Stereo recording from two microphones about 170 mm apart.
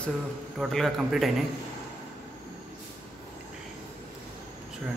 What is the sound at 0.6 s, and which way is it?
Speech, centre (ahead or behind).